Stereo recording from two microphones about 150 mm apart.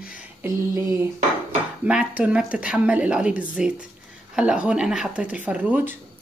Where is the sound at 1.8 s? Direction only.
10° right (ahead or behind).